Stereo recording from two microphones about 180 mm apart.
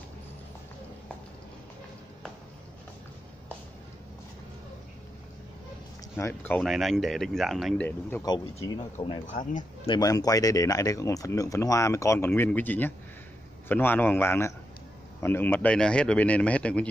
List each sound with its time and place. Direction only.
6.1 s speech: 10° left (ahead or behind)
6.6 s speech: centre (ahead or behind)
8.2 s speech: 20° left (ahead or behind)
9.3 s speech: 45° left (ahead or behind)
9.8 s speech: 20° left (ahead or behind)